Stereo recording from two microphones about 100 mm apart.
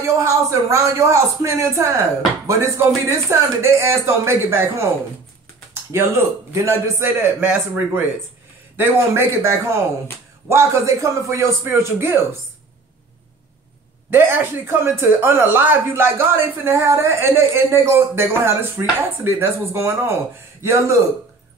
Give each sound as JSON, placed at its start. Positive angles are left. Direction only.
{"t": 0.0, "sound": "a woman's voice", "side_deg": -30}
{"t": 5.9, "sound": "a woman's voice", "side_deg": -30}
{"t": 14.1, "sound": "a woman's voice", "side_deg": -20}